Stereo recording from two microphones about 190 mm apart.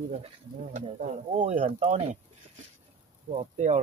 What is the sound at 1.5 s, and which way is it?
Speech, 35° right (ahead or behind).